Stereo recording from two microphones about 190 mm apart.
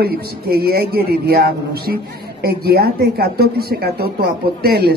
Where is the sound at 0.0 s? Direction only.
55° right (ahead or behind).